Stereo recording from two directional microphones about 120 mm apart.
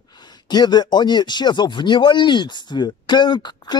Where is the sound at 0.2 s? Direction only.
35° left (ahead or behind).